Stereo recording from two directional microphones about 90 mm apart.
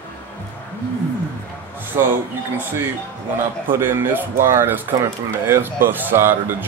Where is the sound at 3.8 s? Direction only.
25° right (ahead or behind).